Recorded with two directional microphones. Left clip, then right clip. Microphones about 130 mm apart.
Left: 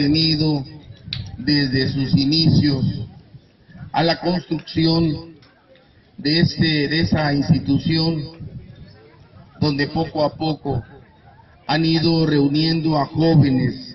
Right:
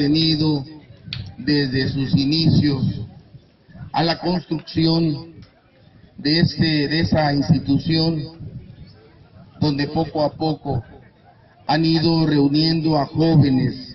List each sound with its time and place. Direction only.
0.4 s a sound: centre (ahead or behind)
1.4 s a man's voice: 25° left (ahead or behind)
3.9 s a man's voice: 10° left (ahead or behind); by 8.3 s 20° right (ahead or behind)
9.6 s a man's voice: 15° right (ahead or behind); by 13.9 s centre (ahead or behind)